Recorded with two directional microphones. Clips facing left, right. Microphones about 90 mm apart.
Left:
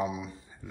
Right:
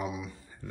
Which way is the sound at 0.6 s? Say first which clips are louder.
Right 2 dB; 10° left (ahead or behind).